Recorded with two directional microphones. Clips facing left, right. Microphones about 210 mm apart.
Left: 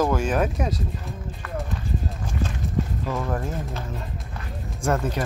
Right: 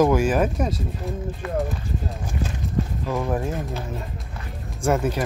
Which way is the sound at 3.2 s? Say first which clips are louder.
Right 5 dB; 15° right (ahead or behind).